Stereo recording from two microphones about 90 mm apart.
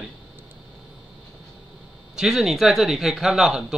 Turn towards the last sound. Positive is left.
turn(degrees=-5)  # may be behind; listen again after turning